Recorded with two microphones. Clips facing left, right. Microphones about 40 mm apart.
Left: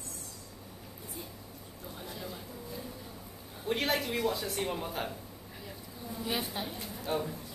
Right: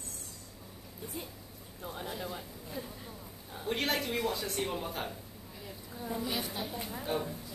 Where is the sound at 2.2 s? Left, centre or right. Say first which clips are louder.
Right 1 dB; right.